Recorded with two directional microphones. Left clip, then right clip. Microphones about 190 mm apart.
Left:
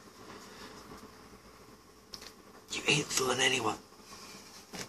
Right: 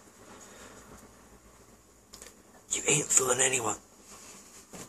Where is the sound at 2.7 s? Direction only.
15° right (ahead or behind).